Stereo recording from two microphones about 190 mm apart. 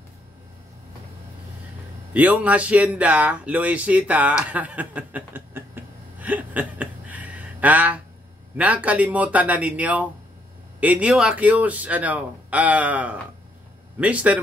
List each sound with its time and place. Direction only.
2.1 s speech: 10° right (ahead or behind)